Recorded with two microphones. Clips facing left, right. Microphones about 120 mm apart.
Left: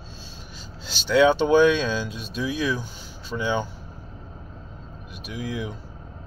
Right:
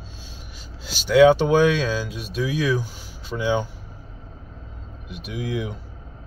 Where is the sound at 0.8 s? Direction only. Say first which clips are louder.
Right 4 dB; 10° right (ahead or behind).